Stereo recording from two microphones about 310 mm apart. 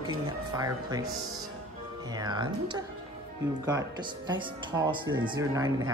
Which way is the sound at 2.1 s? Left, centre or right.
Centre.